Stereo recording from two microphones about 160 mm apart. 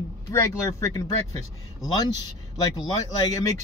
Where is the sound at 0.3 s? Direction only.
15° left (ahead or behind).